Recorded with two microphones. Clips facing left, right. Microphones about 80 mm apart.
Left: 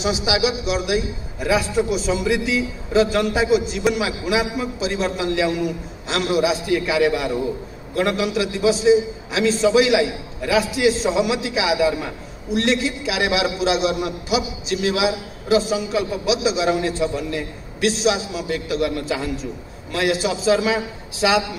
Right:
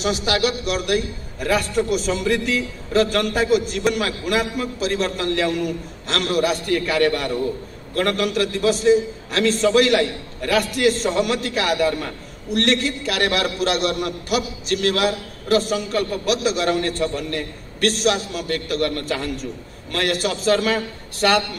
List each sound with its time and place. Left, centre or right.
0.0 s a man's voice: centre